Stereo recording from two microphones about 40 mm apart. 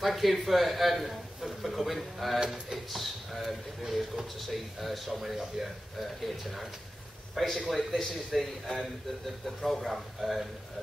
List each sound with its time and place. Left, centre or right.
0.0 s speech: centre
2.4 s speech: centre
2.9 s speech: centre